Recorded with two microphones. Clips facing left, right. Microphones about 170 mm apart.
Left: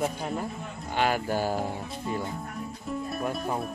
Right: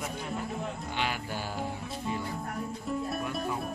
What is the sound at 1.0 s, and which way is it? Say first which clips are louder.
Music: left 10 dB; 45° left (ahead or behind).